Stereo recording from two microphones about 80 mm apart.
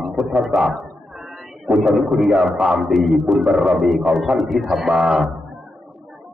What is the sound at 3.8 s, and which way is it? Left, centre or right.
A man's voice, centre.